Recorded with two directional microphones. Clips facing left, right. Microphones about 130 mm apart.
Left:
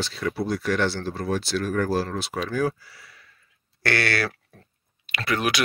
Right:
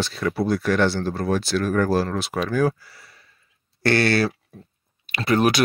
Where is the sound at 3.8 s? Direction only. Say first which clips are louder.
Right 6 dB; 30° right (ahead or behind).